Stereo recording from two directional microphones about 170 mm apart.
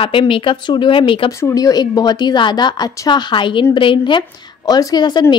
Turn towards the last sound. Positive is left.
turn(degrees=25)  # may be behind; listen again after turning